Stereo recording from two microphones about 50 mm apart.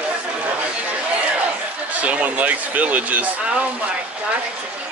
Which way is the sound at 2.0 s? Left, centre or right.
Right.